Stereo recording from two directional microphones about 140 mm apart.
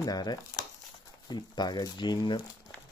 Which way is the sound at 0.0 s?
30° left (ahead or behind).